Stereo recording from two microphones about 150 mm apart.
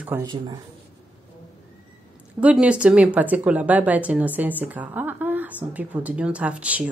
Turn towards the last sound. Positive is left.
turn(degrees=-10)  # may be behind; listen again after turning